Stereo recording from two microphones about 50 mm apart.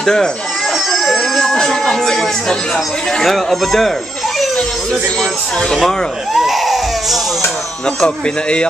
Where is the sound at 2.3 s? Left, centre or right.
Centre.